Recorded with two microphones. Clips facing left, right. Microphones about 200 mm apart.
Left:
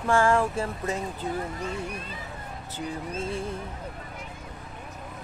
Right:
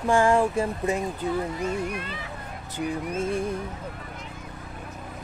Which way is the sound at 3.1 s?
15° right (ahead or behind).